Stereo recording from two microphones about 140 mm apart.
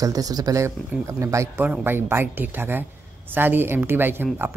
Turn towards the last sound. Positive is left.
turn(degrees=-15)  # may be behind; listen again after turning